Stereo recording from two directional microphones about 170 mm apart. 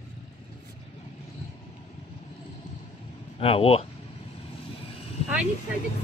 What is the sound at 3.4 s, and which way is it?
Speech, 35° left (ahead or behind).